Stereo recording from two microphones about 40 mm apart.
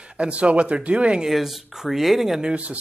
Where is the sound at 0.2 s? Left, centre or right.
Right.